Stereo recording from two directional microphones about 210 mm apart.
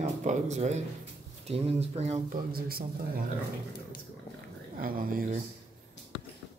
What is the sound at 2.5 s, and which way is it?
Speech, 45° right (ahead or behind).